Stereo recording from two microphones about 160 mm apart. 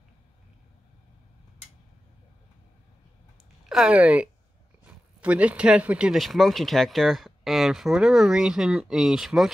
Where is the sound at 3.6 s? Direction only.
5° right (ahead or behind).